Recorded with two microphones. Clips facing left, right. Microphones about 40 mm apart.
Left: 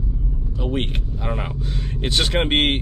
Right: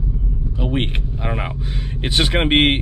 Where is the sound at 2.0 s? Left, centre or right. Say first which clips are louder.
Right 2 dB; centre.